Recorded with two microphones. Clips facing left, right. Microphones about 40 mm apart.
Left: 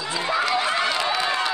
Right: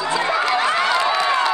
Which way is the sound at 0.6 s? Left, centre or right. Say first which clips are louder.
Right 5 dB; right.